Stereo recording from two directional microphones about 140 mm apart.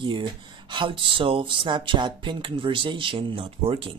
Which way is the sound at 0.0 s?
35° right (ahead or behind).